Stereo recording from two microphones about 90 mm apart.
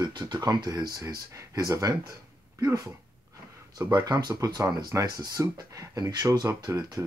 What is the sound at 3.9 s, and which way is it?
Speech, 55° right (ahead or behind).